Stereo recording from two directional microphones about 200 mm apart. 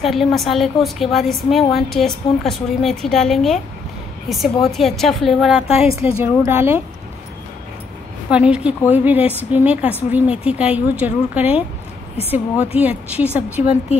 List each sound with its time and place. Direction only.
0.0 s a woman's voice: centre (ahead or behind)
8.3 s a woman's voice: 5° right (ahead or behind)
12.7 s a woman's voice: 5° right (ahead or behind)
13.3 s a woman's voice: 30° left (ahead or behind)